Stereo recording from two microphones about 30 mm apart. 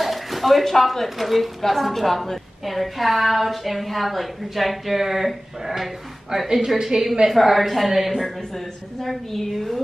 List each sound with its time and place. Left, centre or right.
0.0 s a woman's voice: centre
6.9 s a woman's voice: right
7.2 s a woman's voice: centre
9.0 s a woman's voice: centre